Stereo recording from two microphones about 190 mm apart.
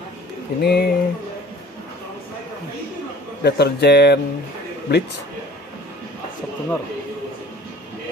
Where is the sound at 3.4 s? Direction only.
60° left (ahead or behind).